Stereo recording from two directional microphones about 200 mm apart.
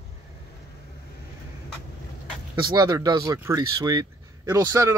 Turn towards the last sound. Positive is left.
turn(degrees=-15)  # may be behind; listen again after turning